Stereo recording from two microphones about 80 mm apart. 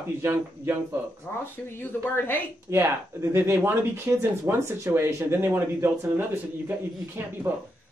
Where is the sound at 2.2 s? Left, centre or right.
Left.